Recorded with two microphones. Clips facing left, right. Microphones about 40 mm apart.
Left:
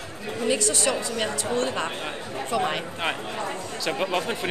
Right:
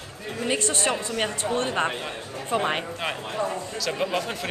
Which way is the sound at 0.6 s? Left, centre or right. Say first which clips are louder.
Left 1 dB; right.